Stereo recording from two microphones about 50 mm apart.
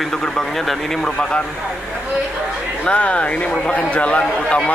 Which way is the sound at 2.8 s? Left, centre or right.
Left.